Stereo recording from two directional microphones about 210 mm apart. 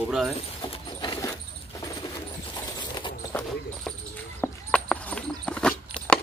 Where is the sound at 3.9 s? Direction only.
5° left (ahead or behind).